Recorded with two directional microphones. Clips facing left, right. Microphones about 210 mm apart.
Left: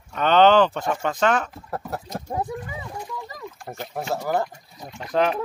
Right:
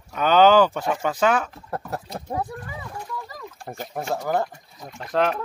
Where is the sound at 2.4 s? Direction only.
20° left (ahead or behind).